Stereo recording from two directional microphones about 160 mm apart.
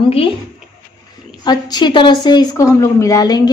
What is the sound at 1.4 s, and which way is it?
A woman's voice, 25° left (ahead or behind).